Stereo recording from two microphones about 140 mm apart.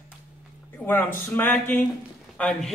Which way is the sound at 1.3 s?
15° left (ahead or behind).